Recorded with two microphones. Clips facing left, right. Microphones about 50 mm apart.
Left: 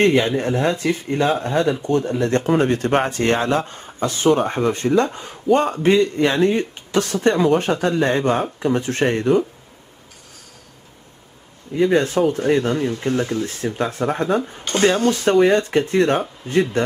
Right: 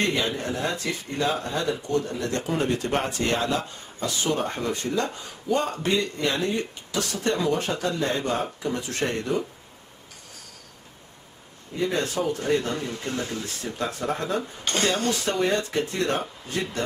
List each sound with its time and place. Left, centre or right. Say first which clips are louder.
0.0 s a man's voice: left 9 dB; left
11.8 s a man's voice: left 9 dB; left
14.6 s speech: left 8 dB; centre
15.0 s a man's voice: left 9 dB; left